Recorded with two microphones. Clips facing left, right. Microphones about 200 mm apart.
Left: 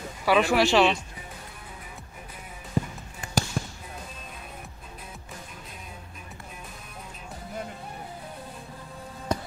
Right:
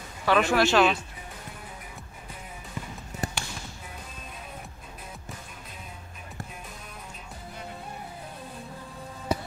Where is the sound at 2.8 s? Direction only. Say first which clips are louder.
Left 11 dB; 35° left (ahead or behind).